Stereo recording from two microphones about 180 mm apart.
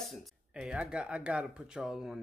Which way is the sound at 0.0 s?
Centre (ahead or behind).